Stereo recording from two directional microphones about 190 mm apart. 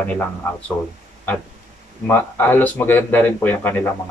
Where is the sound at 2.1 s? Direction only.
10° left (ahead or behind).